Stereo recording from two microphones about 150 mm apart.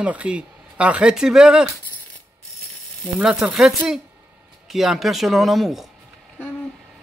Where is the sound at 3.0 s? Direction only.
5° right (ahead or behind).